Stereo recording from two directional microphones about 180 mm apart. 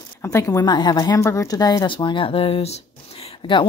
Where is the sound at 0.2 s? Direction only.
15° left (ahead or behind).